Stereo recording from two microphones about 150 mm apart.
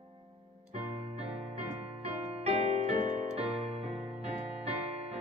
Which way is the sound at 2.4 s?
45° right (ahead or behind).